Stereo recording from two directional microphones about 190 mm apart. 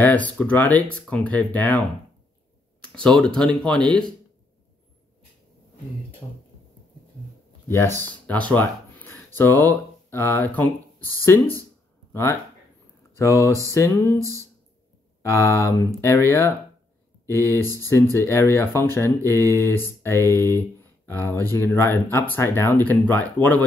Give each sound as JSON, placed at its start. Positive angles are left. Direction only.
{"t": 0.0, "sound": "speech", "side_deg": 10}
{"t": 7.6, "sound": "speech", "side_deg": 15}
{"t": 12.1, "sound": "speech", "side_deg": 15}
{"t": 15.2, "sound": "speech", "side_deg": 15}